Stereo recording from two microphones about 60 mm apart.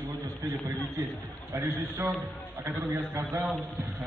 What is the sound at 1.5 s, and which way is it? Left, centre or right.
A man's voice, right.